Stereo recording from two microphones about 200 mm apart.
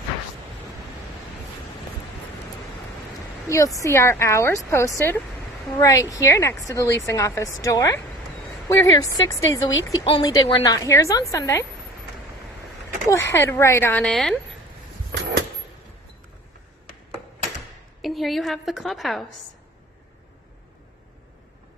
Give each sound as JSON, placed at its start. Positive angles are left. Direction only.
{"t": 3.4, "sound": "speech", "side_deg": 15}
{"t": 13.1, "sound": "speech", "side_deg": 15}
{"t": 18.0, "sound": "a woman's voice", "side_deg": 0}